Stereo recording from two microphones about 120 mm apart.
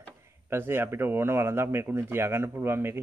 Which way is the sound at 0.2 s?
20° right (ahead or behind).